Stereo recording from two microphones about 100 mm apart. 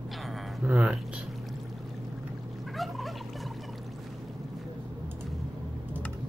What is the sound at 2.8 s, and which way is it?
Fowl, centre (ahead or behind).